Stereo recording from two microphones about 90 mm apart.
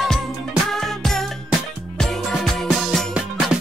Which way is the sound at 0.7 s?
5° left (ahead or behind).